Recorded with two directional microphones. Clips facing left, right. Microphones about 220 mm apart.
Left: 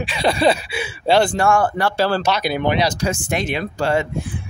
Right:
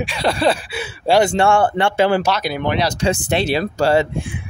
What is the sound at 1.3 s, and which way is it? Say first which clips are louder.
Speech: right 2 dB; 30° right (ahead or behind).